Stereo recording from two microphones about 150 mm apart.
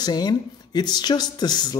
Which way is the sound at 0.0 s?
25° left (ahead or behind).